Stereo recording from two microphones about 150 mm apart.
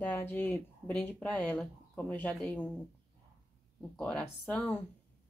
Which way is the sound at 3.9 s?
5° left (ahead or behind).